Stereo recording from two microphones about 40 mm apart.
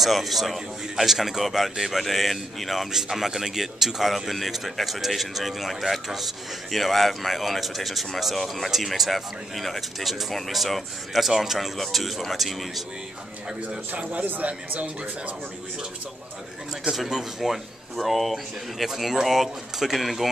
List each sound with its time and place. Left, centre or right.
0.0 s speech: centre
2.9 s speech: centre
14.1 s a man's voice: right
17.1 s speech: centre